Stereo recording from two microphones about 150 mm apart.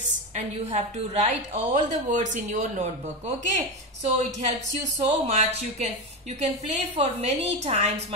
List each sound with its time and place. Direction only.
0.4 s a woman's voice: 50° right (ahead or behind)
4.0 s a woman's voice: 50° right (ahead or behind)